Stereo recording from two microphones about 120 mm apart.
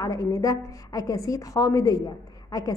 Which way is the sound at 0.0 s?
30° left (ahead or behind).